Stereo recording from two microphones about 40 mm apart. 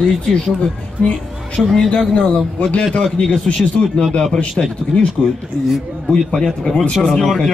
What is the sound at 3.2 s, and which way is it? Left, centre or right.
Speech, centre.